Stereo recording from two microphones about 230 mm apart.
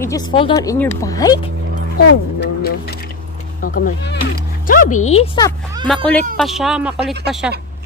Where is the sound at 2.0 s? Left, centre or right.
Left.